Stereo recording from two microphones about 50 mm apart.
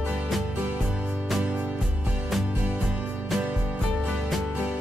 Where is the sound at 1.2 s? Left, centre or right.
Centre.